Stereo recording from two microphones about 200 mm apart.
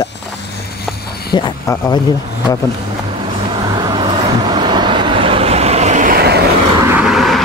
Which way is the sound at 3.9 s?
20° right (ahead or behind).